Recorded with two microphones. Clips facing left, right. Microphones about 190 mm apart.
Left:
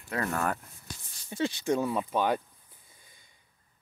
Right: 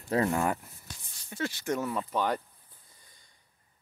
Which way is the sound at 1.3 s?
20° left (ahead or behind).